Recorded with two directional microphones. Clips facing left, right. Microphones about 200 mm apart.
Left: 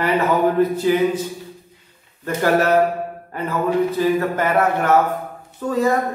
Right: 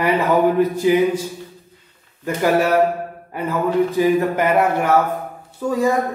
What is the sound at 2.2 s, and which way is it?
Speech, 10° right (ahead or behind).